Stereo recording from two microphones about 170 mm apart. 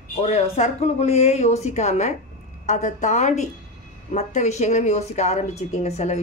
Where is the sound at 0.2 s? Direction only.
40° left (ahead or behind).